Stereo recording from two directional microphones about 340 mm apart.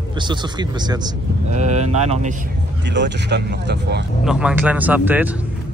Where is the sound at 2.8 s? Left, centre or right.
Right.